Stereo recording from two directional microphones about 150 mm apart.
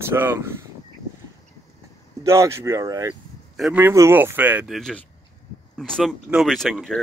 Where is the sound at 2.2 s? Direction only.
20° right (ahead or behind).